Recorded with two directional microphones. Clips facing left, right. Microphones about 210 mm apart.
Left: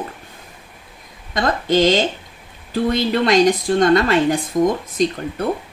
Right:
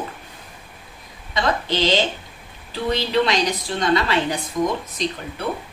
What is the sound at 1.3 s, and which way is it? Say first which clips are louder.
A woman's voice: left 5 dB; 50° left (ahead or behind).